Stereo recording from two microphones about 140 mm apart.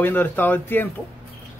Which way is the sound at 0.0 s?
15° left (ahead or behind).